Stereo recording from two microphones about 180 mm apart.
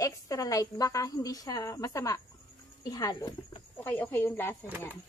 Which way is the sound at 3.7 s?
10° left (ahead or behind).